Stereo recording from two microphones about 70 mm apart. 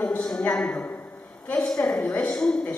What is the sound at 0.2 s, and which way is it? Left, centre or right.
A woman's voice, centre.